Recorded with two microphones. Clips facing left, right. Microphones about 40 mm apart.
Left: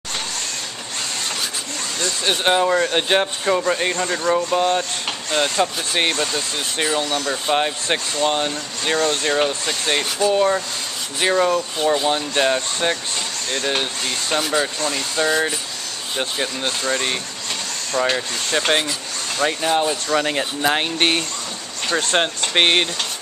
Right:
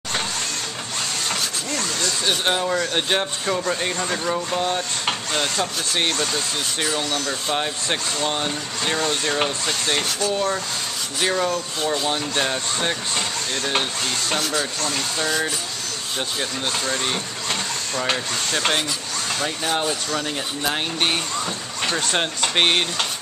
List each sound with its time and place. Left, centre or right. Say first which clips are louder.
1.3 s speech: right 1 dB; centre
3.9 s speech: left 4 dB; centre
8.9 s speech: left 5 dB; centre
14.0 s speech: left 2 dB; centre
20.2 s speech: left 5 dB; left
21.9 s speech: left 6 dB; centre